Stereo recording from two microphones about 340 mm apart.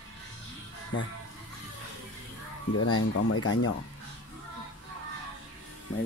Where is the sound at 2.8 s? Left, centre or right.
Left.